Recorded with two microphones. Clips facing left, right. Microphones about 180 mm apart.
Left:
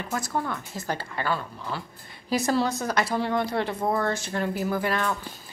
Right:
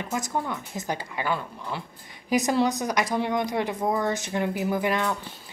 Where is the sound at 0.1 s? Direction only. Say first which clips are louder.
Even; 15° right (ahead or behind).